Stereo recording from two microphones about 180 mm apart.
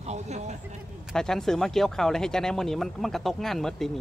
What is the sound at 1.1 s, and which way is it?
Speech, 5° left (ahead or behind).